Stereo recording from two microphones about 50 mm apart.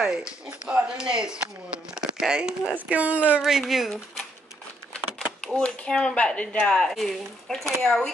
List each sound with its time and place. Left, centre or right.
0.0 s speech: centre
0.5 s speech: right
2.9 s speech: right
3.4 s speech: centre
4.9 s a sound: centre
6.1 s speech: left
6.8 s speech: centre